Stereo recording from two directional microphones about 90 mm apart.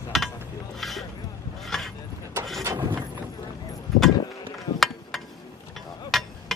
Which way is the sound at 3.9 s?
Centre (ahead or behind).